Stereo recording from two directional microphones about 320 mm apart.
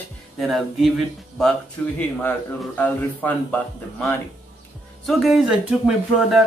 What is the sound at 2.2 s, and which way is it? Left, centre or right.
Speech, centre.